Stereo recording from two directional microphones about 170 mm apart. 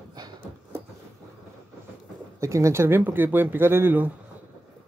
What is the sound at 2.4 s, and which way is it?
Speech, 15° right (ahead or behind).